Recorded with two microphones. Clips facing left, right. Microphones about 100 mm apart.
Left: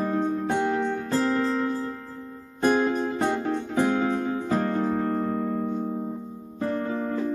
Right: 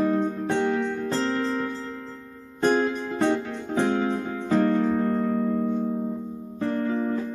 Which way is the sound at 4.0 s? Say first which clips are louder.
Left 1 dB; 35° left (ahead or behind).